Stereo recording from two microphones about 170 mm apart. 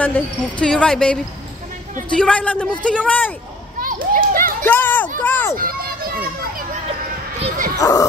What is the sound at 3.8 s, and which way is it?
Children playing, 55° right (ahead or behind).